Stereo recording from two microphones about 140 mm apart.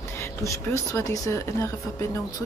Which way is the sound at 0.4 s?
20° left (ahead or behind).